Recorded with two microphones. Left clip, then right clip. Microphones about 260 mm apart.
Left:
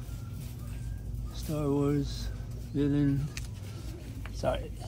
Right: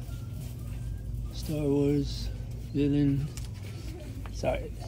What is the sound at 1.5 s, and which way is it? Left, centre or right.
Speech, left.